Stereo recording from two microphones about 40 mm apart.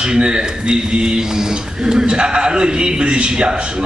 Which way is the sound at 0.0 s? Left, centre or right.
Right.